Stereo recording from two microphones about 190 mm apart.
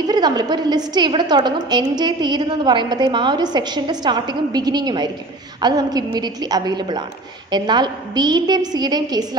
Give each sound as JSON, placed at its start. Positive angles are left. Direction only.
{"t": 0.0, "sound": "a woman's voice", "side_deg": -20}